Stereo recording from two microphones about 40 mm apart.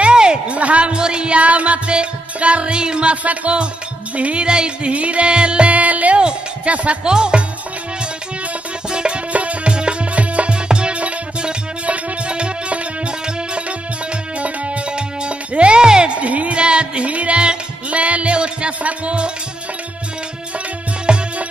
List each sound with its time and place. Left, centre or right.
0.0 s a sound: right
0.6 s a woman's voice: right
0.9 s music: right
3.3 s a woman's voice: right
4.2 s music: right
6.2 s speech: right
7.1 s music: right
8.9 s music: right
9.3 s music: right
14.4 s music: right
16.2 s music: right
21.1 s music: right